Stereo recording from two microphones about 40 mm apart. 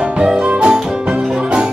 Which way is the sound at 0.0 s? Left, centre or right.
Centre.